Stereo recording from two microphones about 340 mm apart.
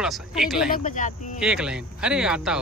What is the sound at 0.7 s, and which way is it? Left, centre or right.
Speech, left.